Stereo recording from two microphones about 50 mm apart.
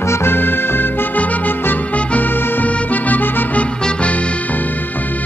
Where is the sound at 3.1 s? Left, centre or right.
Left.